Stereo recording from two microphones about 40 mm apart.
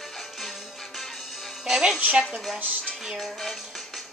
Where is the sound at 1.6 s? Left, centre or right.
Centre.